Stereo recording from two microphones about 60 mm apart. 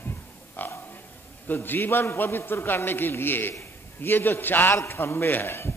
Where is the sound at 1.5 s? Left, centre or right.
Left.